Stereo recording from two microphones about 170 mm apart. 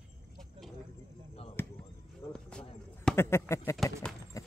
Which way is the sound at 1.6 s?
15° left (ahead or behind).